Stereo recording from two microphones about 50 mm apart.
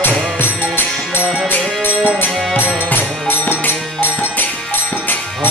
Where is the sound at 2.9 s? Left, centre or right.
Left.